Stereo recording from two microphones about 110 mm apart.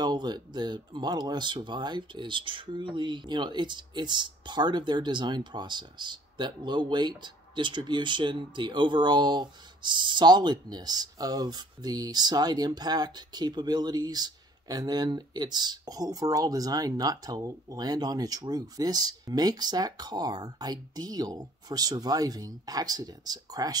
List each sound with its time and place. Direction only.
0.0 s speech: 40° right (ahead or behind)